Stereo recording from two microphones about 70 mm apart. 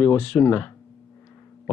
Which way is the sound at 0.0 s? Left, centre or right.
Left.